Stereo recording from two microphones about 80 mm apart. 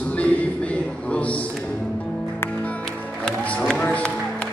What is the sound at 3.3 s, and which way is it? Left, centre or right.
Music, centre.